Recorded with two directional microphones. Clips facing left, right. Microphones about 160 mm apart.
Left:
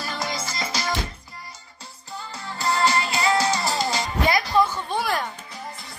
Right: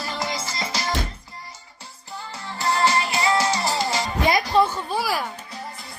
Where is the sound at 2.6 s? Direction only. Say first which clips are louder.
Right 1 dB; 20° right (ahead or behind).